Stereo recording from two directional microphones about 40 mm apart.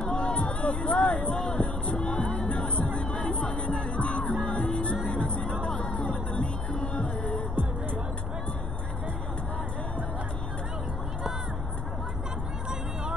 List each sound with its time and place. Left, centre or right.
0.0 s a sound: left
1.3 s speech: centre
1.6 s music: left